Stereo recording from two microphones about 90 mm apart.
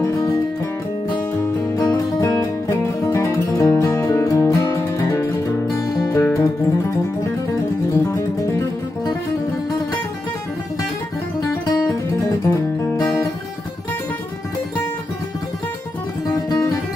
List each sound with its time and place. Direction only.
2.1 s music: 35° left (ahead or behind)
7.9 s music: 35° left (ahead or behind)